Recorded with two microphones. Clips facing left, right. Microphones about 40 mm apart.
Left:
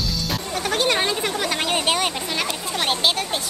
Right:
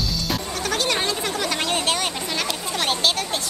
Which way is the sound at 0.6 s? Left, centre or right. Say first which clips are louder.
Left 3 dB; centre.